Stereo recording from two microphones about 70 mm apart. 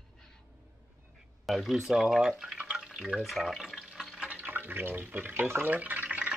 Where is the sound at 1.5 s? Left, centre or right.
Centre.